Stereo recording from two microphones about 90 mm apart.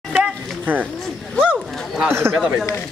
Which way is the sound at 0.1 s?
20° right (ahead or behind).